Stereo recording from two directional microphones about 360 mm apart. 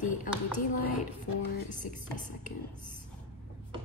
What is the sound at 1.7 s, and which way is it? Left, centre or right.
Speech, left.